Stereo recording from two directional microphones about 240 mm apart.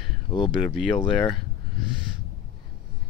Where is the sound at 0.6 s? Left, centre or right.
Centre.